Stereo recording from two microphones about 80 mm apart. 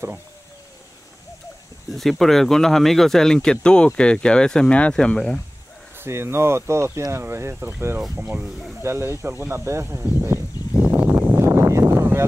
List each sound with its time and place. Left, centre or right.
1.9 s speech: centre
5.9 s speech: right
11.2 s a sound: right